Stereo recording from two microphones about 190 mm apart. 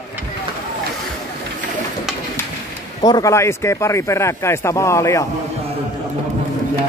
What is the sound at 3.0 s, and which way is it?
Speech, 20° left (ahead or behind).